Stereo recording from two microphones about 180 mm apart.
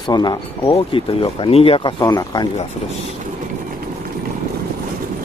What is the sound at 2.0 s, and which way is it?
Speech, 20° left (ahead or behind).